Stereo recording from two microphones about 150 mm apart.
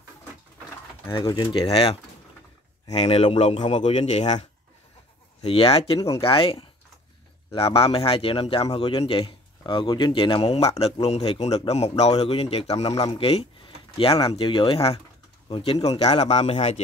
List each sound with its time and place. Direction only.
1.1 s a man's voice: 30° left (ahead or behind)
3.0 s a man's voice: 40° left (ahead or behind)
5.9 s speech: 20° left (ahead or behind)
6.2 s a man's voice: 35° left (ahead or behind)
12.8 s a man's voice: 30° left (ahead or behind); by 16.8 s 45° left (ahead or behind)